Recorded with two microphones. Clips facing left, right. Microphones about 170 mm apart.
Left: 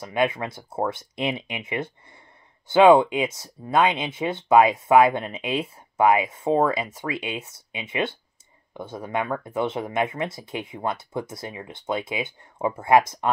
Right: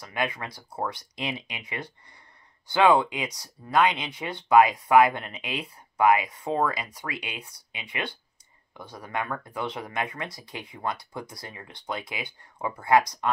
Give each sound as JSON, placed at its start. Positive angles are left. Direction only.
{"t": 0.0, "sound": "speech", "side_deg": 25}